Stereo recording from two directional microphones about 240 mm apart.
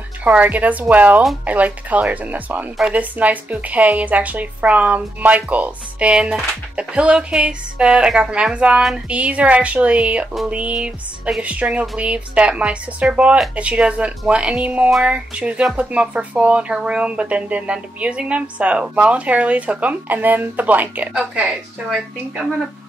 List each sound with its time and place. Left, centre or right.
0.2 s speech: centre